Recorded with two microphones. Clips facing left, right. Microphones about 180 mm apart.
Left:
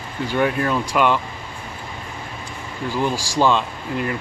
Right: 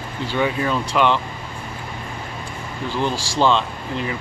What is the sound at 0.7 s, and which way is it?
Speech, 5° left (ahead or behind).